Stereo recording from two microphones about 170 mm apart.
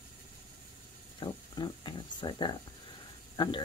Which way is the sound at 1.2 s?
25° left (ahead or behind).